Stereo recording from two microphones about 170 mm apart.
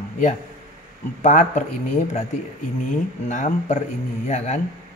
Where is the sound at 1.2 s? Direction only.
45° left (ahead or behind).